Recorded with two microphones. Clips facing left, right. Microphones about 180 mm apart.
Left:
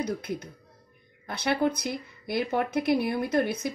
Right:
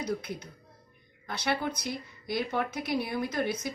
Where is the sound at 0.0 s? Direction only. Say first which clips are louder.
Left 3 dB; 55° left (ahead or behind).